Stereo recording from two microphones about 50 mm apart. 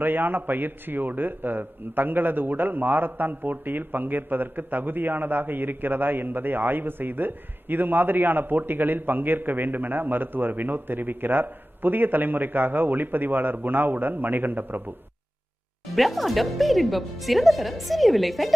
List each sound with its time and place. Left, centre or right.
0.0 s a man's voice: right
15.9 s speech: centre